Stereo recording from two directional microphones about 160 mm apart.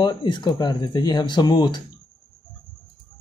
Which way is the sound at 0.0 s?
30° left (ahead or behind).